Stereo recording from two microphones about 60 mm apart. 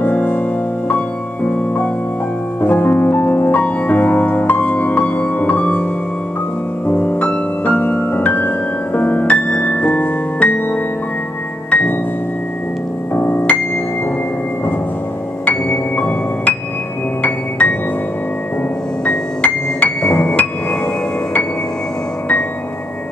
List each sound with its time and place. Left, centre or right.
0.0 s music: left
6.9 s music: left
13.1 s music: left
15.4 s music: left
19.0 s music: left